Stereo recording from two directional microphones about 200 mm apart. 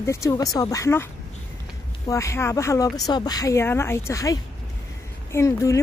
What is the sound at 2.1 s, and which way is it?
Speech, 15° left (ahead or behind).